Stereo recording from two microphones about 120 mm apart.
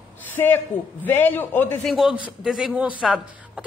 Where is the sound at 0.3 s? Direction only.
15° left (ahead or behind).